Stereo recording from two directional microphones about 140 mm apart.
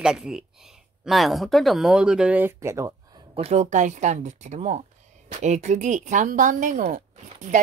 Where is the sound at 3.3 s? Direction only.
50° right (ahead or behind).